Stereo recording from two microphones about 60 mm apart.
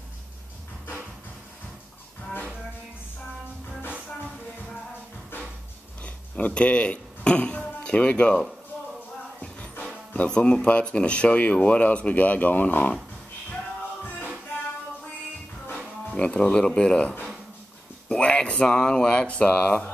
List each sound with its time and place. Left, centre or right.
6.0 s speech: left
9.4 s music: left
10.1 s speech: centre
16.1 s speech: centre